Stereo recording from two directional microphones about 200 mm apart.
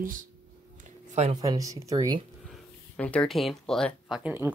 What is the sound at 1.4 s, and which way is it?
Speech, 15° right (ahead or behind).